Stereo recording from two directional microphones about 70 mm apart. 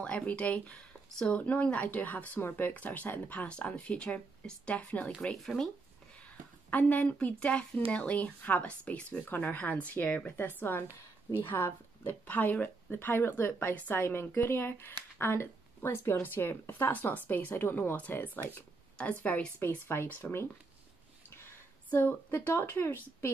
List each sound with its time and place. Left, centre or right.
0.0 s a woman's voice: centre
5.4 s speech: centre
6.7 s a woman's voice: left
11.4 s a woman's voice: left
19.6 s speech: left
21.3 s a sound: left